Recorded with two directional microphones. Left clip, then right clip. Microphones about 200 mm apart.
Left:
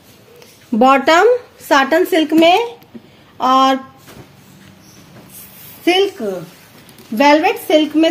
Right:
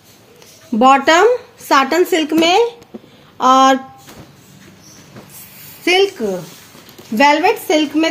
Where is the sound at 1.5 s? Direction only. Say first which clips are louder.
Even; 15° right (ahead or behind).